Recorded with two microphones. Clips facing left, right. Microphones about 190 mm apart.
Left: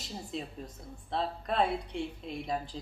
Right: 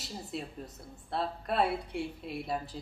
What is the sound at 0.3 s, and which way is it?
A woman's voice, 5° right (ahead or behind).